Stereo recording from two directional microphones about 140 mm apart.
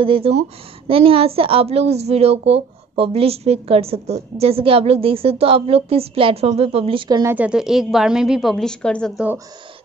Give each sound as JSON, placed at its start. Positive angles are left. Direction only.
{"t": 0.0, "sound": "a woman's voice", "side_deg": -40}
{"t": 7.1, "sound": "a woman's voice", "side_deg": -25}
{"t": 7.3, "sound": "a woman's voice", "side_deg": -5}